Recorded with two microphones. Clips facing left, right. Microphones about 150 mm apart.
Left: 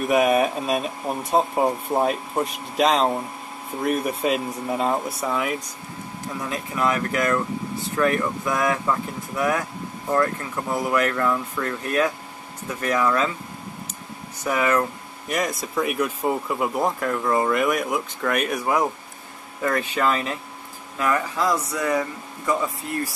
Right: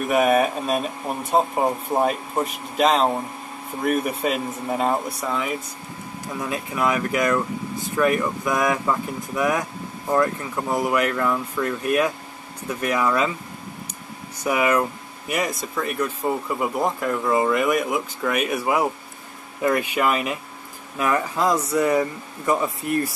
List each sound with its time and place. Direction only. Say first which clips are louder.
0.1 s speech: even; centre (ahead or behind)
6.5 s speech: right 1 dB; 20° right (ahead or behind)
14.4 s speech: right 1 dB; 10° right (ahead or behind)
15.7 s speech: left 2 dB; 10° left (ahead or behind); by 23.1 s 20° right (ahead or behind)